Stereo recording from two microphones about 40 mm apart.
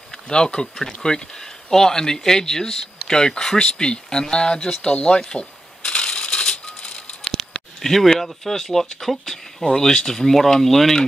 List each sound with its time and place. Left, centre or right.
0.3 s speech: left
4.8 s shuffling cards: left
7.2 s a sound: centre
8.1 s speech: centre